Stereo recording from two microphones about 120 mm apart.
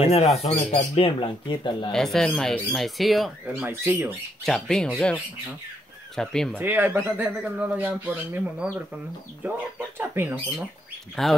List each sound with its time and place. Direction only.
0.4 s speech: 60° left (ahead or behind); by 1.9 s 40° left (ahead or behind)
1.9 s speech: centre (ahead or behind)
3.6 s speech: 20° right (ahead or behind)
4.5 s speech: 5° left (ahead or behind)
6.6 s speech: 15° right (ahead or behind)
11.2 s speech: 5° left (ahead or behind)